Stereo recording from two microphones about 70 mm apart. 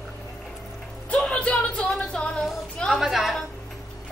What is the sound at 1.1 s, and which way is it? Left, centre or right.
Music, centre.